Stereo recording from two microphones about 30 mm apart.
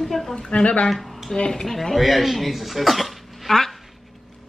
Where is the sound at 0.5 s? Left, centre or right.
Left.